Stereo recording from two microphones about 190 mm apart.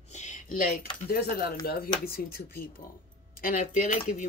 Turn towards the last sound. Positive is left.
turn(degrees=45)  # may be behind; listen again after turning